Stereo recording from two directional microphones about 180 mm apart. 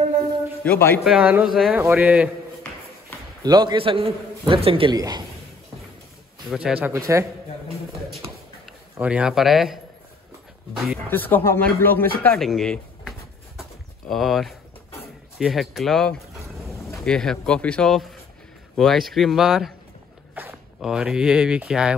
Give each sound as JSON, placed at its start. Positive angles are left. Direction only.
{"t": 0.7, "sound": "speech", "side_deg": 10}
{"t": 1.0, "sound": "speech", "side_deg": -5}
{"t": 3.4, "sound": "a man's voice", "side_deg": -25}
{"t": 6.5, "sound": "speech", "side_deg": -5}
{"t": 8.9, "sound": "speech", "side_deg": -5}
{"t": 11.1, "sound": "speech", "side_deg": 10}
{"t": 13.6, "sound": "a sound", "side_deg": 0}
{"t": 15.3, "sound": "speech", "side_deg": 0}